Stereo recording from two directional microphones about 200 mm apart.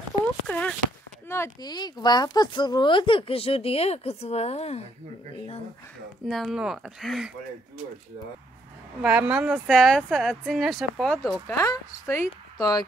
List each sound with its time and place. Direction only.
0.5 s a sound: 5° left (ahead or behind)
1.3 s speech: 15° left (ahead or behind); by 4.8 s 30° left (ahead or behind)
6.2 s speech: centre (ahead or behind)
9.0 s speech: 5° right (ahead or behind)
11.4 s speech: 15° left (ahead or behind)